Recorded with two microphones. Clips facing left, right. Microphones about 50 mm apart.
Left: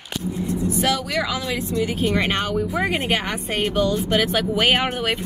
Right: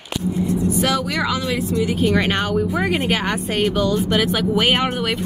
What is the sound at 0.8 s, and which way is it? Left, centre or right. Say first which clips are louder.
A woman's voice: right 2 dB; centre.